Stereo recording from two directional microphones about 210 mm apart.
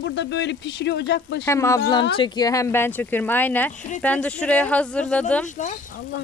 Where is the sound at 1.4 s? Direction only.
15° left (ahead or behind).